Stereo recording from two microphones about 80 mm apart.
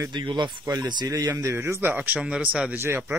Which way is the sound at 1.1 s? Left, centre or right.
Right.